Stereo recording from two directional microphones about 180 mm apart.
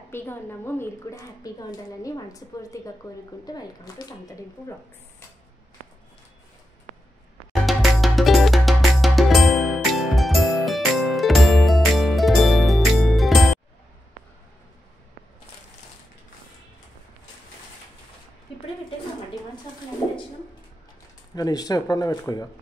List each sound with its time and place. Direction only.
0.1 s a woman's voice: 10° left (ahead or behind)
7.6 s music: centre (ahead or behind)
21.4 s speech: 20° left (ahead or behind)